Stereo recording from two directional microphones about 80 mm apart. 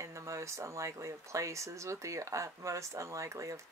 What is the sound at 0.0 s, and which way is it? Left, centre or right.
Speech, right.